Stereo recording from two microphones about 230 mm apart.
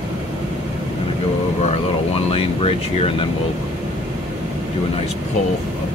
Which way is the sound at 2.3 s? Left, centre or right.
Left.